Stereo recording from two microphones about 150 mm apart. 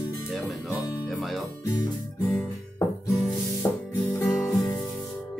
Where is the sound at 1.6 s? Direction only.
25° left (ahead or behind).